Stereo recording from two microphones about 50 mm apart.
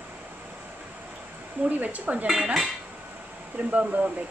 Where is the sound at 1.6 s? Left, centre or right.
Right.